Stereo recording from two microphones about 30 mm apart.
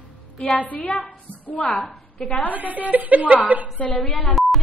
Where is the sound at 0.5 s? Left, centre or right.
Left.